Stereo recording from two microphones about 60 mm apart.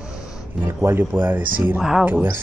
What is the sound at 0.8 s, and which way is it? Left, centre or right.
Speech, right.